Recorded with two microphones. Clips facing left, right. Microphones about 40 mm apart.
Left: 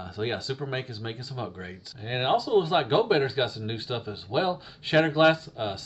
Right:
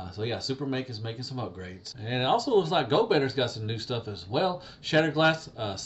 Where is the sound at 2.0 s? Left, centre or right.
Centre.